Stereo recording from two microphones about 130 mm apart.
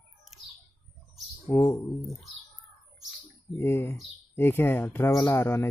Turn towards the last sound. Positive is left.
turn(degrees=20)  # may be behind; listen again after turning